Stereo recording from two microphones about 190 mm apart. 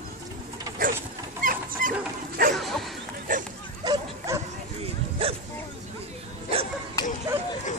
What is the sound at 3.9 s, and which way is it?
Bow-wow, 15° right (ahead or behind).